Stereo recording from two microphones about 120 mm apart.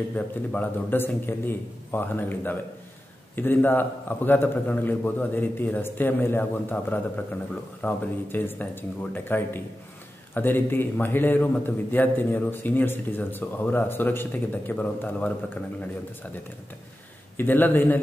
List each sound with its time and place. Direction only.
0.1 s a man's voice: 15° left (ahead or behind)
17.4 s a man's voice: 15° left (ahead or behind)